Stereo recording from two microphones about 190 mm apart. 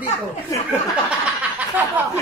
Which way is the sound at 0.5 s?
15° left (ahead or behind).